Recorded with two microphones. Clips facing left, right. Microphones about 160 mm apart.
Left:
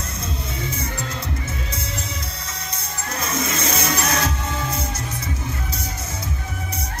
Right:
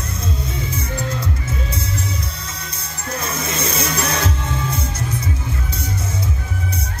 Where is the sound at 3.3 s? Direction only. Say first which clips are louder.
Left 2 dB; 30° right (ahead or behind).